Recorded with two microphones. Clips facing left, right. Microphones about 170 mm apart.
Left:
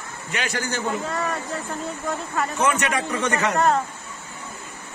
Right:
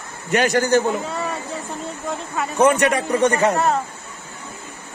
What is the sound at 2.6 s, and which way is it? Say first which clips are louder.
Speech: right 8 dB; 45° right (ahead or behind).